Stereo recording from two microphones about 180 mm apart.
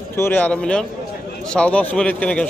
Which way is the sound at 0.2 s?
10° left (ahead or behind).